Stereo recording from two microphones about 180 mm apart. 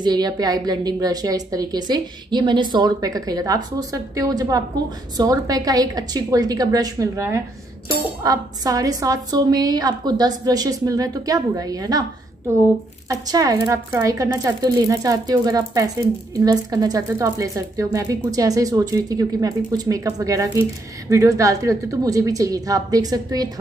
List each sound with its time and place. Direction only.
0.0 s speech: 25° right (ahead or behind)
13.1 s speech: 20° right (ahead or behind)